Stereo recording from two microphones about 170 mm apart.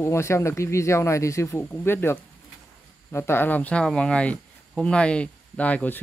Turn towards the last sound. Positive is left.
turn(degrees=10)  # may be behind; listen again after turning